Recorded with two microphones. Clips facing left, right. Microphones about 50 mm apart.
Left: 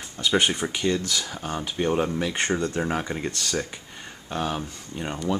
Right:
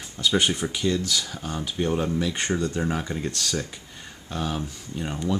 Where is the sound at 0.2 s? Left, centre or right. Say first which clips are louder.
Even; centre.